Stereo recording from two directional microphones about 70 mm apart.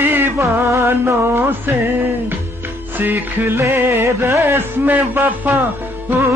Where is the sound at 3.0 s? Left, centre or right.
Right.